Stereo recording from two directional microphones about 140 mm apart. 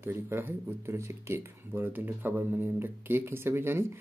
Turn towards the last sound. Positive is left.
turn(degrees=-15)  # may be behind; listen again after turning